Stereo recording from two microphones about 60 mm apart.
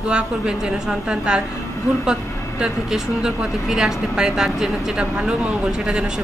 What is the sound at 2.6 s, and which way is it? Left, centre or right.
Speech, centre.